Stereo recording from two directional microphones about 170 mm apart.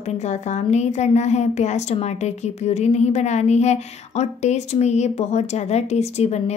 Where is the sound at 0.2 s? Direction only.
40° left (ahead or behind).